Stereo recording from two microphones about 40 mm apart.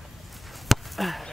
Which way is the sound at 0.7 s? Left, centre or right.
Centre.